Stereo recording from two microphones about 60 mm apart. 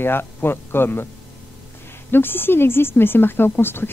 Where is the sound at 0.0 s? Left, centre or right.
Left.